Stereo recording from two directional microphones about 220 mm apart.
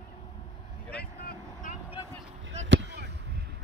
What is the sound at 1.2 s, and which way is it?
Vehicle, 35° left (ahead or behind).